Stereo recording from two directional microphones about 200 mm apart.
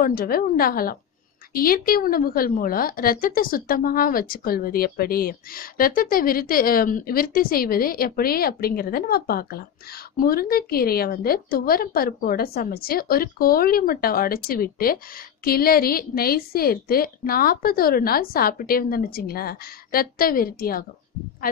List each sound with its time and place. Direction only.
0.0 s a woman's voice: 50° left (ahead or behind)